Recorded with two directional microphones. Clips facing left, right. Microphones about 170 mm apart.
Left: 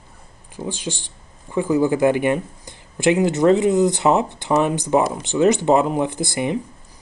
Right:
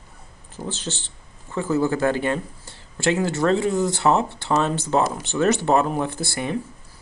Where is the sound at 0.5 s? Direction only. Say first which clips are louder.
Left 3 dB; 10° left (ahead or behind).